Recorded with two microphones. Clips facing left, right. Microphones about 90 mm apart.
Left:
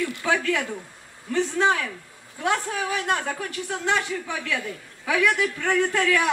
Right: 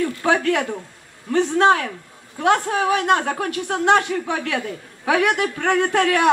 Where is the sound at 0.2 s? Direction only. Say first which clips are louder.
Right 5 dB; 55° right (ahead or behind).